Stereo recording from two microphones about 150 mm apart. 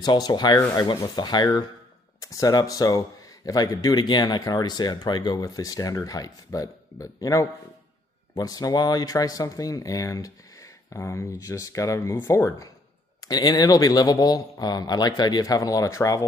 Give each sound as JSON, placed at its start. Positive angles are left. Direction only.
{"t": 0.0, "sound": "speech", "side_deg": 30}